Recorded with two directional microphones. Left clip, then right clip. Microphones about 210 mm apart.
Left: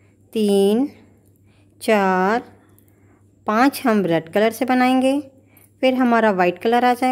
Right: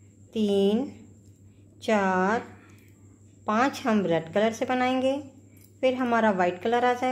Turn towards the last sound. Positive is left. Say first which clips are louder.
# left 7 dB
turn(degrees=55)  # may be behind; listen again after turning